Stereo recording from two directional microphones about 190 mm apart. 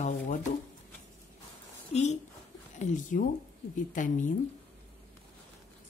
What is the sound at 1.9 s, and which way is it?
A woman's voice, 35° left (ahead or behind).